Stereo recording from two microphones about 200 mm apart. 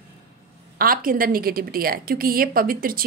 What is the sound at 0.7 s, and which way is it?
A woman's voice, 45° right (ahead or behind).